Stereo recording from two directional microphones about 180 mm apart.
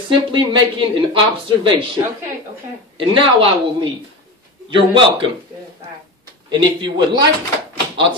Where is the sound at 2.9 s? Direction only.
30° right (ahead or behind).